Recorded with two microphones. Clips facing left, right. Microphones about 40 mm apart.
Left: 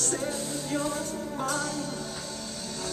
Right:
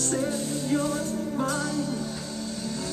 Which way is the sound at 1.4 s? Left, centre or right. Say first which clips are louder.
Right 1 dB; centre.